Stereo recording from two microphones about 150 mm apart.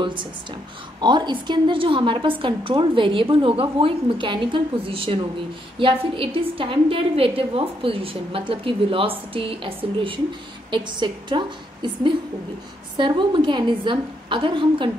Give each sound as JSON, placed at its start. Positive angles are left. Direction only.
{"t": 0.0, "sound": "a woman's voice", "side_deg": -30}